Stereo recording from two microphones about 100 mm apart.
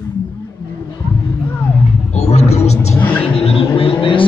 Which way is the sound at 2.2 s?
90° left.